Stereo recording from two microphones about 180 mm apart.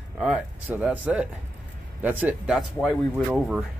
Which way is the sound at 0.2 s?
5° right (ahead or behind).